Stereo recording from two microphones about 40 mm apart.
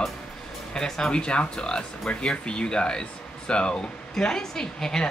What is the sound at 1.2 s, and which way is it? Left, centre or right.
Speech, left.